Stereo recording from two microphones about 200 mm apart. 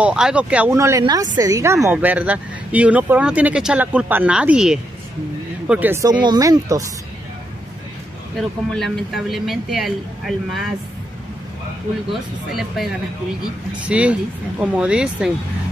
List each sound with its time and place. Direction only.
0.0 s speech: 5° right (ahead or behind)
8.4 s speech: centre (ahead or behind)
12.1 s speech: centre (ahead or behind)
13.8 s speech: 5° right (ahead or behind)